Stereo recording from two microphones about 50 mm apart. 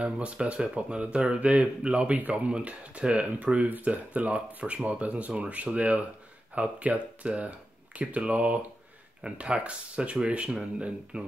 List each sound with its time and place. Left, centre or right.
0.0 s speech: right